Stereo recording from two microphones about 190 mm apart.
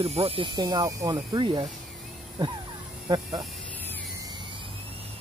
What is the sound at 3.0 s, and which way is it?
Speech, 20° right (ahead or behind).